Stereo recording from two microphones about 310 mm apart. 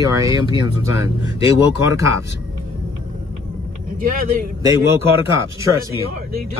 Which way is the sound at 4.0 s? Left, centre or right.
Right.